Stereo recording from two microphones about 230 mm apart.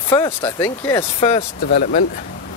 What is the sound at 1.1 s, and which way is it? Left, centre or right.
Speech, left.